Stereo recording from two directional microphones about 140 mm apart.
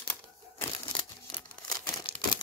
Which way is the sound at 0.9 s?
40° left (ahead or behind).